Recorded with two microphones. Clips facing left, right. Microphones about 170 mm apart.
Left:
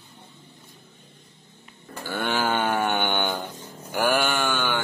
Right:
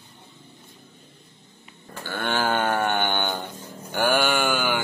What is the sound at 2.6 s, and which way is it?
Mantra, 5° left (ahead or behind).